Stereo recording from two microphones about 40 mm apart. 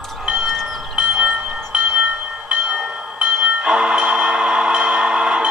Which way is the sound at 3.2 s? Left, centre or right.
Right.